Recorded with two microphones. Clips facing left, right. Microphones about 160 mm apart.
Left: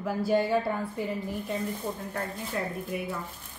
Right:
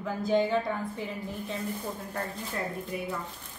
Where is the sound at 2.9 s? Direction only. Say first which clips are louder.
Left 2 dB; 5° left (ahead or behind).